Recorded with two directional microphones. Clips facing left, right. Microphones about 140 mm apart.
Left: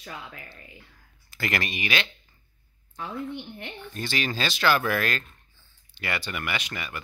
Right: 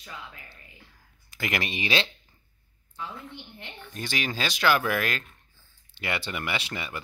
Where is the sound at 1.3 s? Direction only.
15° right (ahead or behind).